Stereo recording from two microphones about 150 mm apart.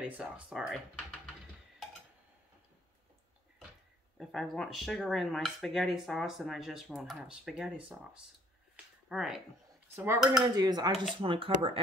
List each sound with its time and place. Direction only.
0.0 s speech: 10° right (ahead or behind)
4.2 s speech: centre (ahead or behind)
9.9 s dishes: 15° right (ahead or behind)
10.3 s cutlery: 25° right (ahead or behind)
11.1 s speech: 35° right (ahead or behind)